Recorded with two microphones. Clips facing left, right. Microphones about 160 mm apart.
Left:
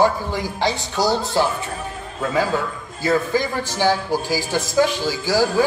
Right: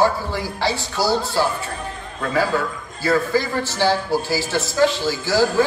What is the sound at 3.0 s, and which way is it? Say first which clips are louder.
A man's voice: even; 15° left (ahead or behind).